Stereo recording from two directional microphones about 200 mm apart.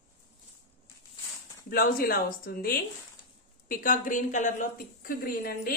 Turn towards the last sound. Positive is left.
turn(degrees=50)  # may be behind; listen again after turning